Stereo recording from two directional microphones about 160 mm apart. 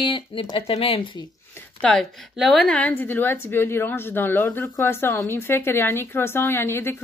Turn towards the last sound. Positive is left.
turn(degrees=15)  # may be behind; listen again after turning